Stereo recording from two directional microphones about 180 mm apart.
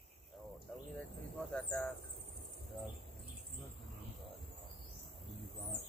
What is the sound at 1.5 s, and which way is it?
Speech, 10° left (ahead or behind).